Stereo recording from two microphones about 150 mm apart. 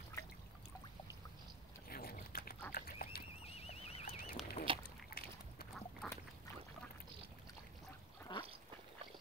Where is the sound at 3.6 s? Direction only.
45° left (ahead or behind).